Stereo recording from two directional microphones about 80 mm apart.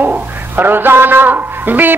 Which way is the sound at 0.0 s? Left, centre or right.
Right.